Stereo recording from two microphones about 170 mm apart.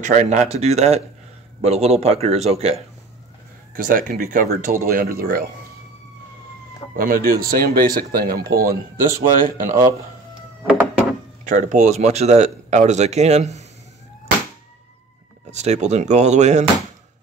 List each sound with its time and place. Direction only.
0.0 s speech: 45° right (ahead or behind)
3.7 s speech: 55° right (ahead or behind)
7.0 s speech: 55° right (ahead or behind)
10.6 s a sound: 10° right (ahead or behind)
11.4 s speech: 45° right (ahead or behind)
15.5 s speech: 40° right (ahead or behind)